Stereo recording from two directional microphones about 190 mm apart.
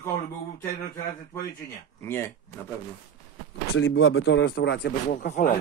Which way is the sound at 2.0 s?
15° left (ahead or behind).